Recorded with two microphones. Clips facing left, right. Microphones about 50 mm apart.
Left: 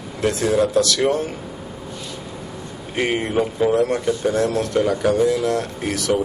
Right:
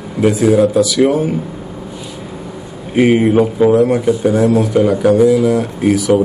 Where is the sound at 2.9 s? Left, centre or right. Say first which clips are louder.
Right 10 dB; centre.